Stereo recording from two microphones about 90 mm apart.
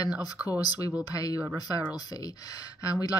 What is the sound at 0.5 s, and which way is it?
Speech, 45° left (ahead or behind).